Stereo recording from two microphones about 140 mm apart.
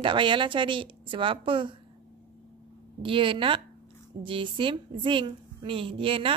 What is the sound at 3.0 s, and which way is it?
A woman's voice, 35° right (ahead or behind).